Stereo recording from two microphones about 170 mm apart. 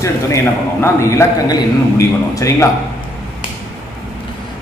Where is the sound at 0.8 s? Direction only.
15° left (ahead or behind).